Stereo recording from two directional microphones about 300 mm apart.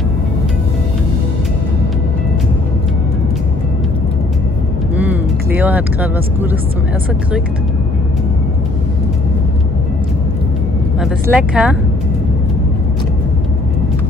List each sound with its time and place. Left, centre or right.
4.9 s vehicle: centre
11.0 s speech: centre